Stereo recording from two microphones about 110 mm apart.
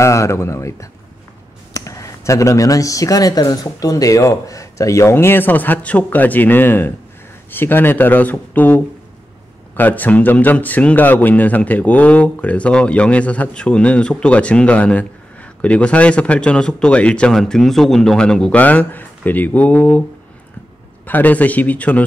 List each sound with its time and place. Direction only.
0.0 s a man's voice: 25° left (ahead or behind)
21.0 s a man's voice: 15° left (ahead or behind)